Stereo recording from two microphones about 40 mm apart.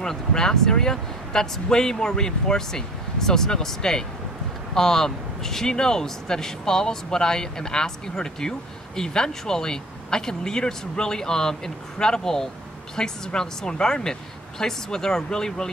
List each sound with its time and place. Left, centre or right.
0.0 s a man's voice: centre